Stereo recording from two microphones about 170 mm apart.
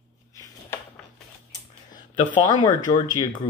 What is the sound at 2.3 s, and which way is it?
Speech, 25° left (ahead or behind).